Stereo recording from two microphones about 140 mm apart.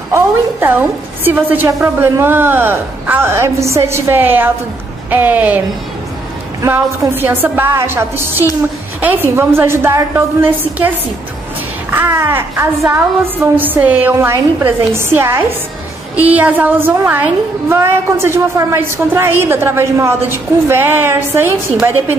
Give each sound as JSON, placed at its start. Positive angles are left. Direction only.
{"t": 0.1, "sound": "a woman's voice", "side_deg": -15}
{"t": 6.6, "sound": "a woman's voice", "side_deg": -15}
{"t": 11.9, "sound": "a woman's voice", "side_deg": -15}